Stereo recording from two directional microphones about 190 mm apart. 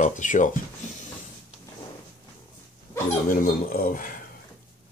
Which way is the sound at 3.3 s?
45° left (ahead or behind).